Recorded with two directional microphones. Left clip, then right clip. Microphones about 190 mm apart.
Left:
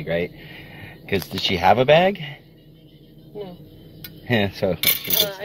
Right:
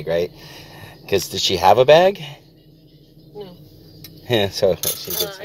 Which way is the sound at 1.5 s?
10° right (ahead or behind).